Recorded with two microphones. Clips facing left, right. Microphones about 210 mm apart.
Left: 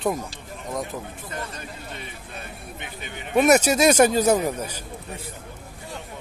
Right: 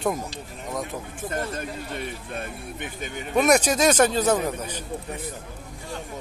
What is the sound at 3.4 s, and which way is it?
Speech, 10° left (ahead or behind).